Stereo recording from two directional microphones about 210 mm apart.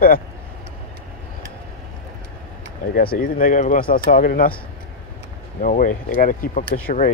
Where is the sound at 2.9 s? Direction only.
45° left (ahead or behind).